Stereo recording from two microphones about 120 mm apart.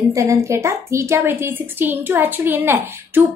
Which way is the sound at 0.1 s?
25° right (ahead or behind).